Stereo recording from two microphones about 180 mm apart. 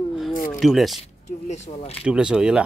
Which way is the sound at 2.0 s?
5° right (ahead or behind).